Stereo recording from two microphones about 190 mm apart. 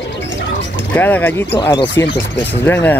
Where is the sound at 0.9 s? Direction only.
10° left (ahead or behind).